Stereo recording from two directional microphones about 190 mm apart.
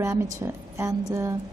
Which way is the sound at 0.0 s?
15° right (ahead or behind).